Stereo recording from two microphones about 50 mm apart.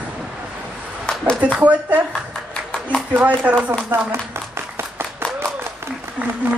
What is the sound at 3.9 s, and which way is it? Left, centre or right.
Speech, right.